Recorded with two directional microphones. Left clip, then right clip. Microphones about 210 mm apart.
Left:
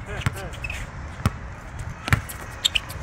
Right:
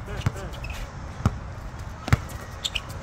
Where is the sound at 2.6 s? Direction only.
15° right (ahead or behind).